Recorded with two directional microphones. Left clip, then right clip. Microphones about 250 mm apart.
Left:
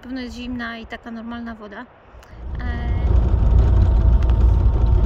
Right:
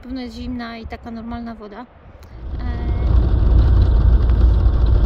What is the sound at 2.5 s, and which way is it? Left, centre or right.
Vehicle, centre.